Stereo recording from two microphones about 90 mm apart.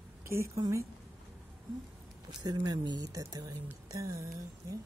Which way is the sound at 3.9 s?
40° right (ahead or behind).